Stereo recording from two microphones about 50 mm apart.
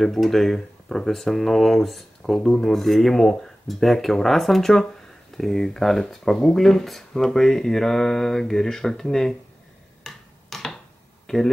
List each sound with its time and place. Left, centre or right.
0.0 s speech: centre
10.0 s tick-tock: centre
11.3 s speech: centre